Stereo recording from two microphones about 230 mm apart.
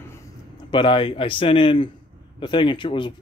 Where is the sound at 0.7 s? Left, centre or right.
Left.